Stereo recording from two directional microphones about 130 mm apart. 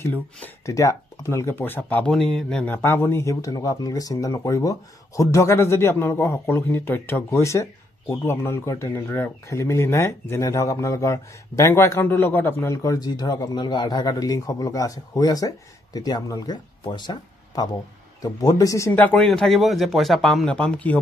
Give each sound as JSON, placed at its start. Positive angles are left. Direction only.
{"t": 0.0, "sound": "speech", "side_deg": 15}
{"t": 18.9, "sound": "speech", "side_deg": 15}